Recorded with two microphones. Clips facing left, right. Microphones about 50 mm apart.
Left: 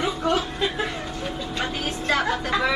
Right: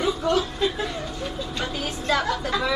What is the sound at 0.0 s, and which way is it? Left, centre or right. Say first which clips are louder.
Chuckle: right 1 dB; left.